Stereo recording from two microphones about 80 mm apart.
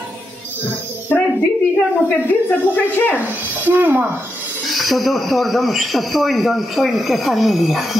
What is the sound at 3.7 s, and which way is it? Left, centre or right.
Speech, right.